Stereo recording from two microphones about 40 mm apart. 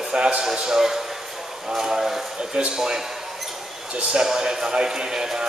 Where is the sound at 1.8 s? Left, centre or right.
Centre.